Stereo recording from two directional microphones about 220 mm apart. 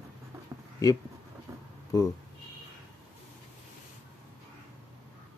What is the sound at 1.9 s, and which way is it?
Speech, 15° left (ahead or behind).